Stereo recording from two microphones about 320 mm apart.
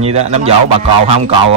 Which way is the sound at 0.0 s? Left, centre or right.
Centre.